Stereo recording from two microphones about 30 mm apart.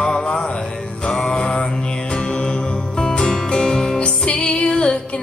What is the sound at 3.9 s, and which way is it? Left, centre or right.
Music, left.